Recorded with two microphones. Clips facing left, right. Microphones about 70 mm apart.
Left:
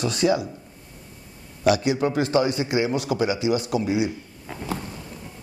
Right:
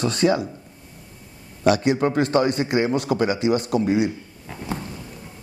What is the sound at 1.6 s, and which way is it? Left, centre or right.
A man's voice, right.